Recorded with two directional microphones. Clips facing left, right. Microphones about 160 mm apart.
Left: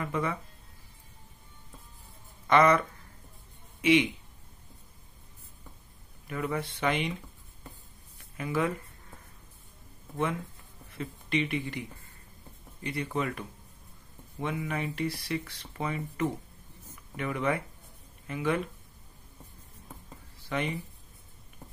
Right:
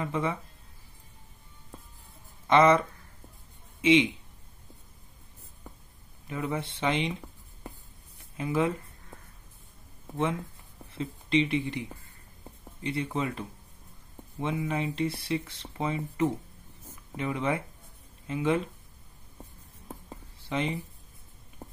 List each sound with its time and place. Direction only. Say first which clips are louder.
0.0 s speech: right 1 dB; 20° right (ahead or behind)
2.4 s speech: right 2 dB; 25° right (ahead or behind)
3.8 s speech: right 2 dB; 25° right (ahead or behind)
6.2 s speech: even; 20° right (ahead or behind)
8.4 s speech: right 2 dB; 25° right (ahead or behind)
10.9 s speech: right 4 dB; 25° right (ahead or behind)
12.8 s speech: right 1 dB; 25° right (ahead or behind)
14.4 s speech: right 3 dB; 20° right (ahead or behind)
20.4 s speech: right 2 dB; 25° right (ahead or behind)